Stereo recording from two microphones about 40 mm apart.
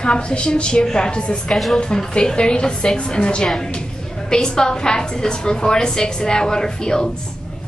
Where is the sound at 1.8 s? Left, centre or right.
Left.